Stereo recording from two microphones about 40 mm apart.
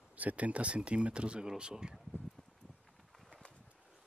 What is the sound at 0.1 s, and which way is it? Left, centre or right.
Speech, right.